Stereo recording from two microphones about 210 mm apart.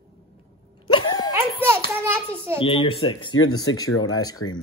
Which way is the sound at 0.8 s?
20° left (ahead or behind).